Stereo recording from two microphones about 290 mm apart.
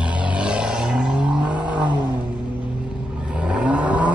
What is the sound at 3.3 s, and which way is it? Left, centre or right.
Vehicle, centre.